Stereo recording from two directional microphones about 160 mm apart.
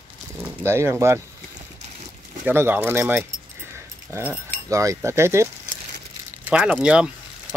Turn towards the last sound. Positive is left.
turn(degrees=-5)  # may be behind; listen again after turning